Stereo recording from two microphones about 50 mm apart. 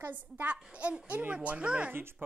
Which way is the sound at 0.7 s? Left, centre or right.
Right.